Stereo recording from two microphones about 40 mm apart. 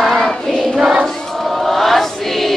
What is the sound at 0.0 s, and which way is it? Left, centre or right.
Choir, centre.